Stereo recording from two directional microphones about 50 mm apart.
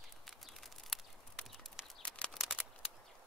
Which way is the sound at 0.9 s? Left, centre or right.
Centre.